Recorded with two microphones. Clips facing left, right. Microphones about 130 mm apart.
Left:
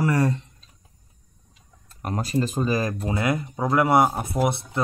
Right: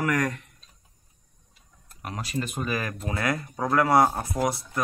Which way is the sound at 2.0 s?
40° left (ahead or behind).